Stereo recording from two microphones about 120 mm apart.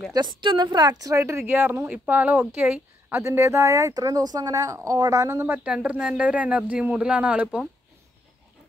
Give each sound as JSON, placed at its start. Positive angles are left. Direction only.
{"t": 0.1, "sound": "speech", "side_deg": -40}
{"t": 5.6, "sound": "speech", "side_deg": -10}